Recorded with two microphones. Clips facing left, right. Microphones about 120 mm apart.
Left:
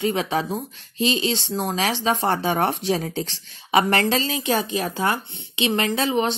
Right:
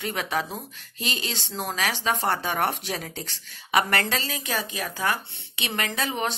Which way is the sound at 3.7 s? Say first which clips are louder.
Left 5 dB; 25° left (ahead or behind).